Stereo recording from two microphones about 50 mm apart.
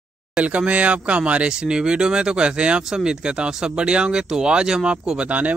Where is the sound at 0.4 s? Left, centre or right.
Right.